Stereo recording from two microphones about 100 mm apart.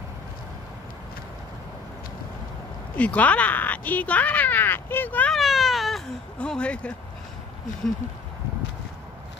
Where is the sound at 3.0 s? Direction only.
15° left (ahead or behind).